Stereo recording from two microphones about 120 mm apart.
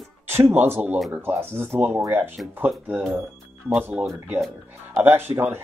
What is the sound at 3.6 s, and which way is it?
Speech, 15° right (ahead or behind).